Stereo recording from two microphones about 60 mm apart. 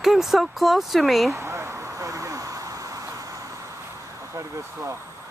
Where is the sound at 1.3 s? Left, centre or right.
Right.